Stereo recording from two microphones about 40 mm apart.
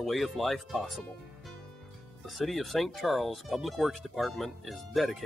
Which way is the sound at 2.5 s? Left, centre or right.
Centre.